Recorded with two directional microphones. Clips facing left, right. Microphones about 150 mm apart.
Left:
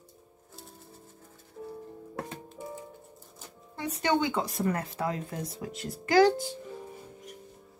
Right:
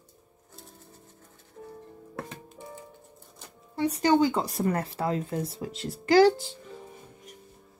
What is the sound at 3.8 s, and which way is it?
Speech, 35° right (ahead or behind).